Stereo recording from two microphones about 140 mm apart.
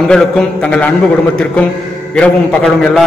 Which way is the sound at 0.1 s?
5° left (ahead or behind).